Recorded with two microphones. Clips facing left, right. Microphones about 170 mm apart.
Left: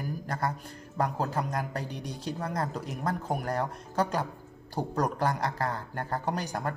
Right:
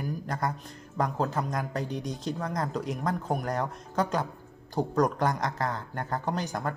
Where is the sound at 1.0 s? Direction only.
35° left (ahead or behind).